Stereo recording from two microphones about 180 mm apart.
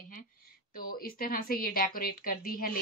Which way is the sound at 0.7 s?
55° left (ahead or behind).